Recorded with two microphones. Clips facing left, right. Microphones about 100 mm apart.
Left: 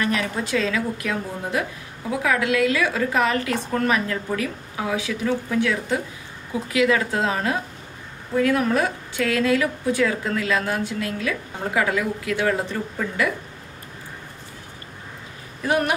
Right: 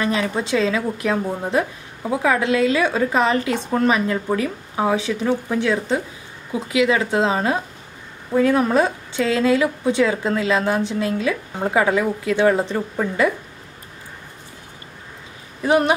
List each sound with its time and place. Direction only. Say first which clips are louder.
0.0 s a woman's voice: right 3 dB; 25° right (ahead or behind)
15.6 s a woman's voice: right 5 dB; 25° right (ahead or behind)